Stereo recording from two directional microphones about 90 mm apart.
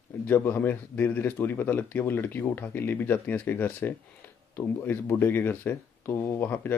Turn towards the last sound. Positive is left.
turn(degrees=30)  # may be behind; listen again after turning